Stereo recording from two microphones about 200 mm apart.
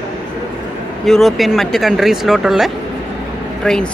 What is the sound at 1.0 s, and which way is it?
Speech, centre (ahead or behind).